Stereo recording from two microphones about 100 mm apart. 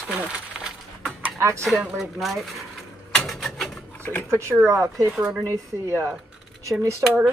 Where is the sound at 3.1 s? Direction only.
Centre (ahead or behind).